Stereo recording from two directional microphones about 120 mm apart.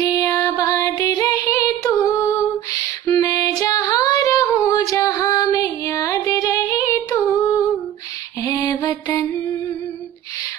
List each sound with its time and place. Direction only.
0.0 s music: 30° left (ahead or behind)
3.1 s female singing: 30° left (ahead or behind)
8.4 s mantra: 25° left (ahead or behind)